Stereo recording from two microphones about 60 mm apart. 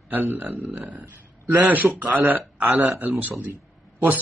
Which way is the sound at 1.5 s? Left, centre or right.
Right.